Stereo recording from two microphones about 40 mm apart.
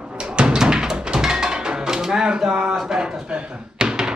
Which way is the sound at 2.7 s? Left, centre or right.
Centre.